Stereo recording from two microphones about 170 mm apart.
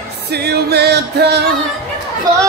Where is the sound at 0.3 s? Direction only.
75° right (ahead or behind).